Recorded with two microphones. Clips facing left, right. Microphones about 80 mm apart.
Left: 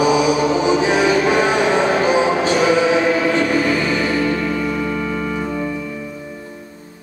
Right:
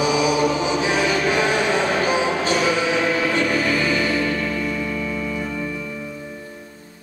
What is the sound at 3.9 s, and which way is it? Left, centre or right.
Music, left.